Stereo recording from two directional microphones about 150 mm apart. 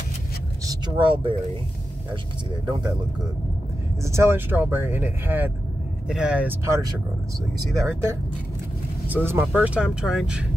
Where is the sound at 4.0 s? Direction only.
20° right (ahead or behind).